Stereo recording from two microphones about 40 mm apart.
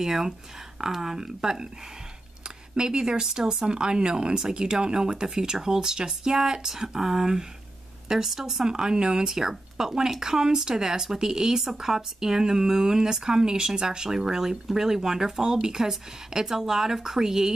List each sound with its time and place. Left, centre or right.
0.0 s speech: centre
2.4 s a sound: right
3.3 s speech: centre